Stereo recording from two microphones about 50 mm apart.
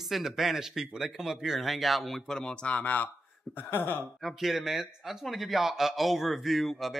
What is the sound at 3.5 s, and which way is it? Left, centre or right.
Speech, left.